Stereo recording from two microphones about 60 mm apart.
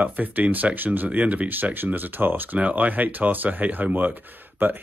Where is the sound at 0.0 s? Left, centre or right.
Right.